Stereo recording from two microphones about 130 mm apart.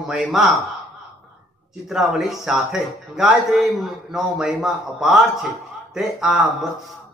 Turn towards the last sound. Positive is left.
turn(degrees=0)  # may be behind; listen again after turning